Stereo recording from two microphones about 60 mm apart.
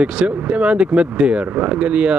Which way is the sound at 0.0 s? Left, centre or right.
Centre.